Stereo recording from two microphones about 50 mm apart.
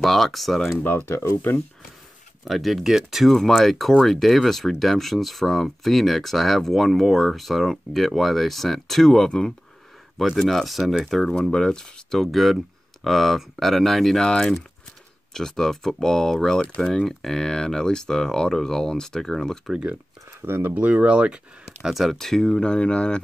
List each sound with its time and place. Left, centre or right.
0.0 s speech: centre
1.0 s speech: left
2.4 s speech: centre
3.3 s speech: centre
11.3 s speech: centre
12.2 s speech: centre
20.4 s speech: right
20.7 s speech: right
22.0 s speech: centre